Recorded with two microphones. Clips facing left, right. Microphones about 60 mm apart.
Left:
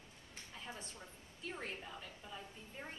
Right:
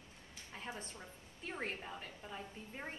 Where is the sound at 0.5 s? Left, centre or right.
Right.